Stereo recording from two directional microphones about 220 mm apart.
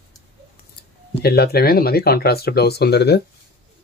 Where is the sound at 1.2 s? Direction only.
45° left (ahead or behind).